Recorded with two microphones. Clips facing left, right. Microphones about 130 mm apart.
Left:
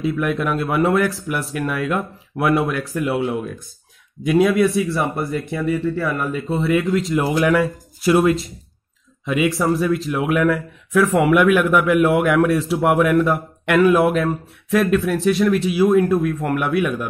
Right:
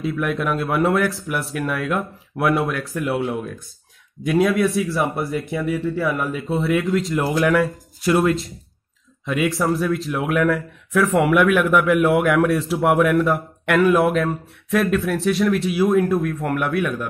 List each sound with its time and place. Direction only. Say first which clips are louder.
0.0 s a man's voice: left 2 dB; centre (ahead or behind)